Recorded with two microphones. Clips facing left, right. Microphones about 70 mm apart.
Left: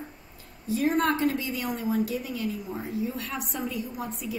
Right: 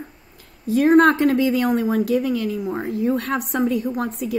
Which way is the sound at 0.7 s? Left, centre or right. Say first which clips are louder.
Right 10 dB; right.